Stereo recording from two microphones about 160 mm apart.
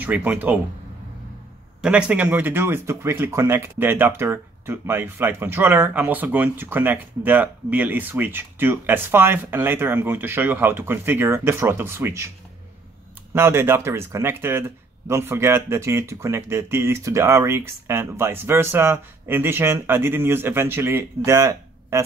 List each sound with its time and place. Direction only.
0.0 s speech: 10° right (ahead or behind)
1.8 s speech: 5° right (ahead or behind)
13.3 s speech: 15° right (ahead or behind)